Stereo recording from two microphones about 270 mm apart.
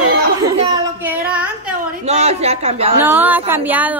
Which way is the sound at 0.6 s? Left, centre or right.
Centre.